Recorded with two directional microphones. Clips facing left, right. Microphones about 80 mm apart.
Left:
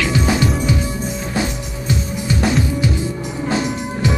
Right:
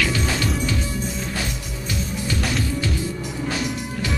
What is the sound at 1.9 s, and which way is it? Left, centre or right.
Music, left.